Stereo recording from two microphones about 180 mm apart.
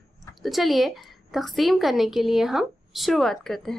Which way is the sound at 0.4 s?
Centre (ahead or behind).